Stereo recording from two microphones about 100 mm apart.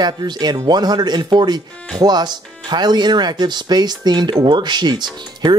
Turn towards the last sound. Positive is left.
turn(degrees=-45)  # may be behind; listen again after turning